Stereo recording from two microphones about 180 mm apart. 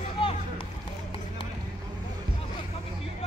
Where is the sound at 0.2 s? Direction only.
30° left (ahead or behind).